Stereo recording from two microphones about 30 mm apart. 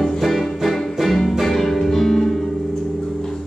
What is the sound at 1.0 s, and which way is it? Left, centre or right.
Music, centre.